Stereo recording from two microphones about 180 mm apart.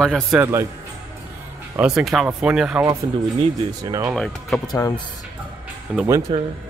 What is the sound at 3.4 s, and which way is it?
Speech, 25° right (ahead or behind).